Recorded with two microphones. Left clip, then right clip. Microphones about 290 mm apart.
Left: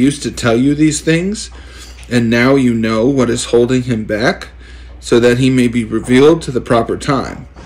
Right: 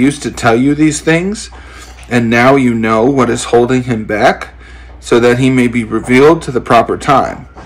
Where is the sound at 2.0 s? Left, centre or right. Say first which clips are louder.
Right 4 dB; right.